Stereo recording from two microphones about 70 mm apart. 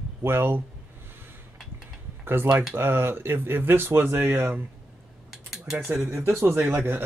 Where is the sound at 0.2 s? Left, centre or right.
Right.